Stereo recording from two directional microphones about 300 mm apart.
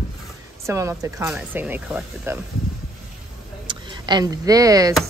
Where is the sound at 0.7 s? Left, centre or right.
Centre.